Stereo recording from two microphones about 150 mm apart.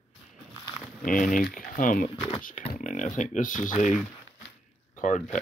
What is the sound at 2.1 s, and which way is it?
Speech, 35° left (ahead or behind).